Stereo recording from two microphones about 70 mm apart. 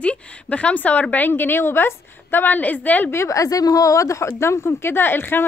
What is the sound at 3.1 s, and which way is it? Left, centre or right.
A woman's voice, left.